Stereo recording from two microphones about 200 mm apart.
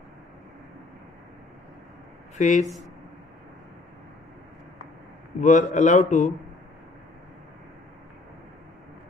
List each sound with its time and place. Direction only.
2.3 s speech: 40° left (ahead or behind)
5.4 s a man's voice: 40° left (ahead or behind)